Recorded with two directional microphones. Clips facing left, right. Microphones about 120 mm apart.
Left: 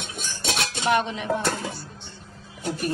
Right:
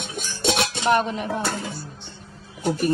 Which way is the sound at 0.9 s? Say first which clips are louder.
Right 2 dB; 45° right (ahead or behind).